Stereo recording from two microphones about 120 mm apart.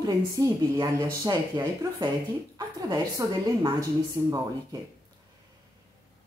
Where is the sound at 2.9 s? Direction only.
30° right (ahead or behind).